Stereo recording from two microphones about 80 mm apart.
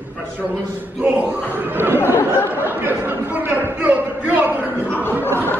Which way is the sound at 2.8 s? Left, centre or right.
Right.